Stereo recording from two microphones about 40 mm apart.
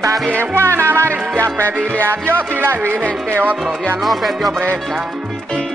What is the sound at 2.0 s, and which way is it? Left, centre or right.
Music, right.